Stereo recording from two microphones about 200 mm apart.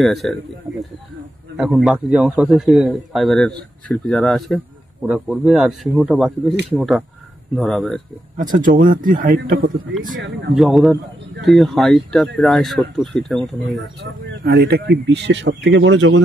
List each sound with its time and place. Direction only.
0.0 s a man's voice: centre (ahead or behind)
8.4 s speech: 40° right (ahead or behind)
10.5 s a man's voice: centre (ahead or behind)
14.4 s speech: 50° right (ahead or behind); by 16.2 s 65° right (ahead or behind)